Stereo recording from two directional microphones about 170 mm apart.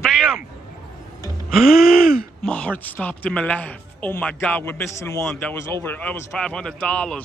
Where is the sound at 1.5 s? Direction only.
5° right (ahead or behind).